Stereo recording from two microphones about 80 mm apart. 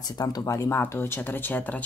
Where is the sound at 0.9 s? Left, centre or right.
Left.